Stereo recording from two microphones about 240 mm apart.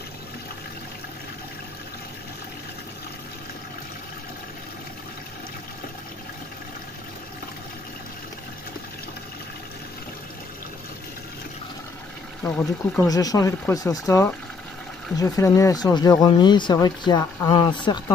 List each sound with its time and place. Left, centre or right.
12.4 s speech: centre